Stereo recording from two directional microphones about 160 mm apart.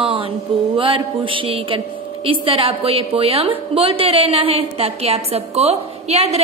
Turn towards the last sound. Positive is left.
turn(degrees=-40)  # may be behind; listen again after turning